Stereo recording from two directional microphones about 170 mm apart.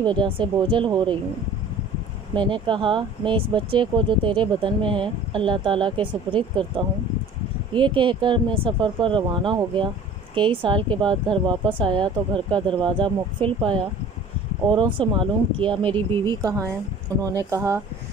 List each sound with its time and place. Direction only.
0.0 s speech: 30° right (ahead or behind)
2.3 s speech: 30° right (ahead or behind)
7.7 s a woman's voice: 30° right (ahead or behind)